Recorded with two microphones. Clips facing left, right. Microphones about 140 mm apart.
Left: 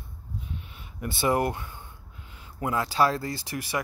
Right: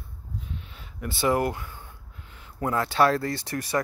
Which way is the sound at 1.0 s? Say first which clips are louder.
Right 1 dB; 20° left (ahead or behind).